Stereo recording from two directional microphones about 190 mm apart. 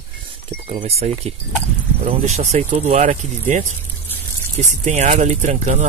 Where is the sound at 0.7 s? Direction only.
35° right (ahead or behind).